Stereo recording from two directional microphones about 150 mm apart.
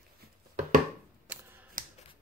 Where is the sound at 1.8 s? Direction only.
70° right (ahead or behind).